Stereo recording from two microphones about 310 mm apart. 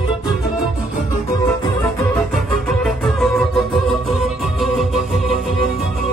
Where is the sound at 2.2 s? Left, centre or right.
Centre.